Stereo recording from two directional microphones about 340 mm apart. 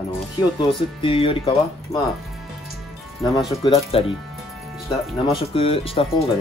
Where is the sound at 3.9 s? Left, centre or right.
Centre.